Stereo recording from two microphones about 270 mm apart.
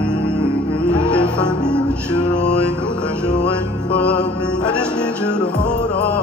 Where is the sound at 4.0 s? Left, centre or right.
Centre.